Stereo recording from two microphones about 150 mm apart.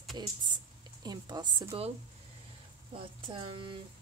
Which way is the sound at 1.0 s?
30° right (ahead or behind).